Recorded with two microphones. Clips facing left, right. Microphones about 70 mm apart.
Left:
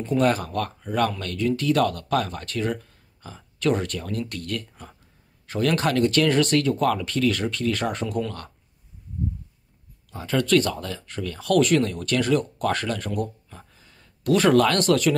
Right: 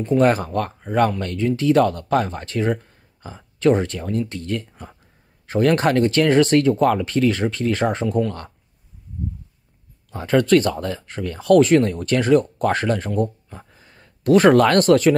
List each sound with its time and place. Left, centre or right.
0.2 s speech: right
5.5 s speech: right
10.1 s speech: right